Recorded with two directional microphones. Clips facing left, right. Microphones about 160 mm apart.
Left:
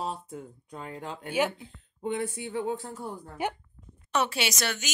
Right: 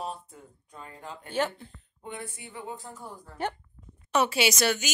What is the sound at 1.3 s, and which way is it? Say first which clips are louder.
Speech: left 1 dB; 10° left (ahead or behind).